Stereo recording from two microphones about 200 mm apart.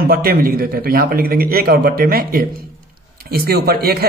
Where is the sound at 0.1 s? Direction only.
50° right (ahead or behind).